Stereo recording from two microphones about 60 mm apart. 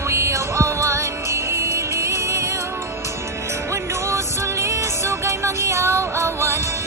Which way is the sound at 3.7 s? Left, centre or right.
Right.